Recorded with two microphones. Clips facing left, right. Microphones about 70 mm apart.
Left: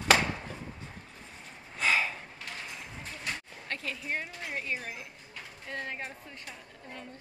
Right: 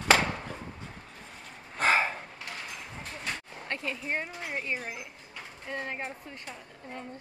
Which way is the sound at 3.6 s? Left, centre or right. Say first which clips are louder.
Right 3 dB; right.